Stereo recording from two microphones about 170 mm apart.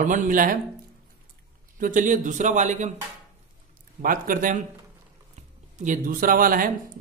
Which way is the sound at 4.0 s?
55° right (ahead or behind).